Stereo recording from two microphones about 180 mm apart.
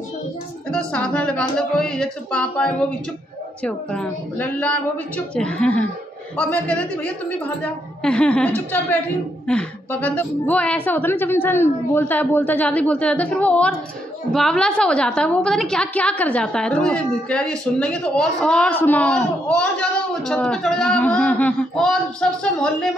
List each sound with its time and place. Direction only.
0.7 s a woman's voice: 5° left (ahead or behind)